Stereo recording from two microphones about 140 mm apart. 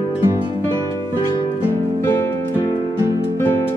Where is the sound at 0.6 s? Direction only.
20° left (ahead or behind).